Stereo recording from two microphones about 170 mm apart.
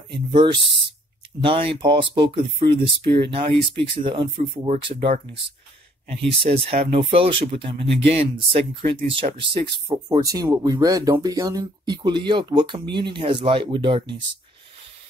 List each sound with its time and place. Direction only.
0.1 s speech: 30° right (ahead or behind)
3.0 s speech: 80° right
3.9 s speech: 30° right (ahead or behind)